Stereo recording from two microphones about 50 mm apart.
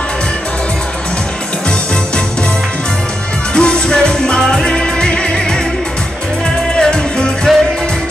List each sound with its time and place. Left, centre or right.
3.5 s music: centre
6.8 s music: centre
7.5 s music: centre